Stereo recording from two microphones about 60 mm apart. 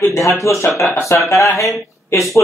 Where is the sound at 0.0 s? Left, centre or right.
Left.